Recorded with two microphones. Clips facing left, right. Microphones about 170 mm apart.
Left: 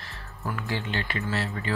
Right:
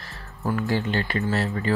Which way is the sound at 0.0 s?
40° right (ahead or behind).